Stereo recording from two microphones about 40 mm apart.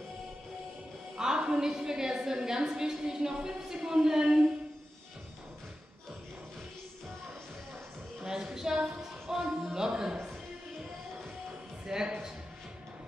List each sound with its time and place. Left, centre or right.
1.1 s a woman's voice: centre
8.2 s music: centre
11.8 s a sound: centre